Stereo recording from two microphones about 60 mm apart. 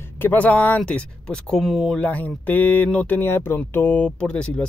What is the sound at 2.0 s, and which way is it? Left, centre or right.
Speech, left.